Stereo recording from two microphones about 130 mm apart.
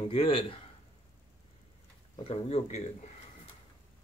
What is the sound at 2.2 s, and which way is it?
Speech, 50° left (ahead or behind).